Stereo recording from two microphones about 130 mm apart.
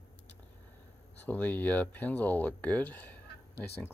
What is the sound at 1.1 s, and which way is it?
Speech, 15° left (ahead or behind).